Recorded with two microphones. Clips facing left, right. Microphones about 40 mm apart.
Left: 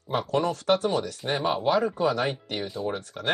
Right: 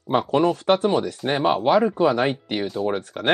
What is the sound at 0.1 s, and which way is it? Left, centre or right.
Speech, right.